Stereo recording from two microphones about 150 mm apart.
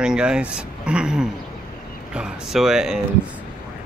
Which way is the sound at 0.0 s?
5° right (ahead or behind).